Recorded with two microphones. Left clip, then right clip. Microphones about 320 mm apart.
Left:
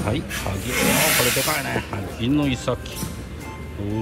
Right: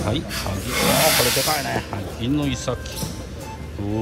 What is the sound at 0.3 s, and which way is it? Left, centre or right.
Speech, right.